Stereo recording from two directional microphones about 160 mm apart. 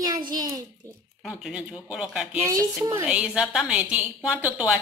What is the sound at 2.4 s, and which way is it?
Speech, 20° right (ahead or behind).